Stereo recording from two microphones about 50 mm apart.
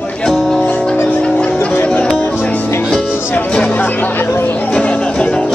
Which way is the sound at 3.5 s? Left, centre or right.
Centre.